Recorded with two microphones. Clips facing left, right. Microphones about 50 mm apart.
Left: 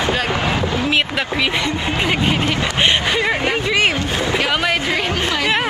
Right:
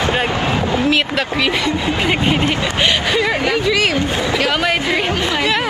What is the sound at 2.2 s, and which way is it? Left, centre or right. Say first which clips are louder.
Speech: right 2 dB; right.